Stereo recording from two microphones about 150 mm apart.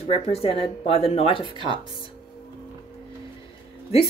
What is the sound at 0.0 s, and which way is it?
Speech, 40° left (ahead or behind).